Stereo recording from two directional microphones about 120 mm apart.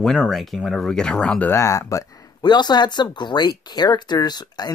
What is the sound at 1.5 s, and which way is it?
Speech, 25° left (ahead or behind).